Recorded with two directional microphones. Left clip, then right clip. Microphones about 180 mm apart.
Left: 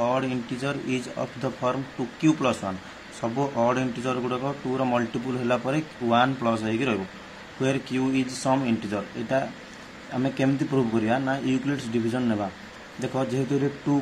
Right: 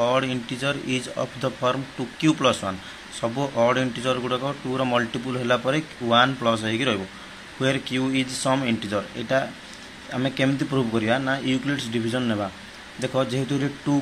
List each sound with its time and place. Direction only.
0.0 s speech: 5° right (ahead or behind)